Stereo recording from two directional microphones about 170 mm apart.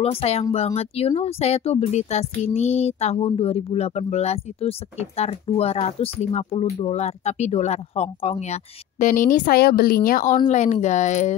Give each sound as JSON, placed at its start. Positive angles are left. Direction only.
{"t": 0.0, "sound": "speech", "side_deg": 35}
{"t": 9.0, "sound": "a woman's voice", "side_deg": 50}